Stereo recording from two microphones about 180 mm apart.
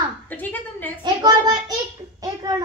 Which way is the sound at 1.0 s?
20° right (ahead or behind).